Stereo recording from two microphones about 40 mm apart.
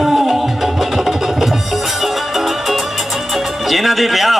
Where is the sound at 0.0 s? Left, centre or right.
Centre.